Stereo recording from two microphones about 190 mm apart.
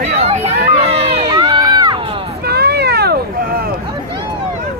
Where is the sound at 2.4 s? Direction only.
55° right (ahead or behind).